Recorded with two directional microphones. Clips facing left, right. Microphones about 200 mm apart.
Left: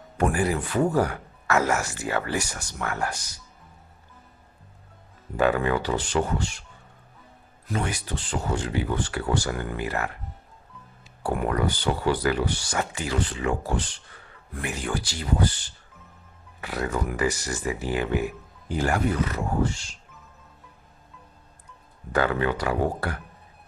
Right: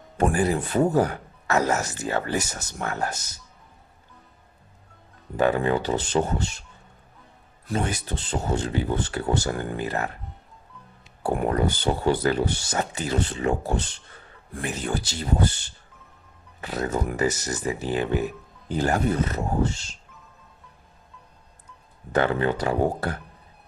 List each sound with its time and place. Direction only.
0.2 s speech: 25° right (ahead or behind)
5.3 s speech: 20° right (ahead or behind)
7.6 s speech: 30° right (ahead or behind)
11.3 s speech: 30° right (ahead or behind)
22.1 s speech: 25° right (ahead or behind)